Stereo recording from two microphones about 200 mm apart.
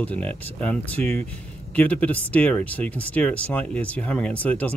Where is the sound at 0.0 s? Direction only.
10° left (ahead or behind).